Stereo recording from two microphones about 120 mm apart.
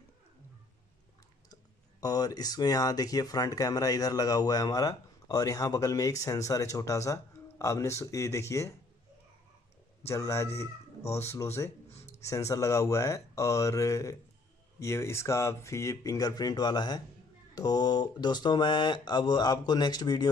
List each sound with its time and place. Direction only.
1.5 s speech: 30° left (ahead or behind)
10.0 s speech: 25° left (ahead or behind)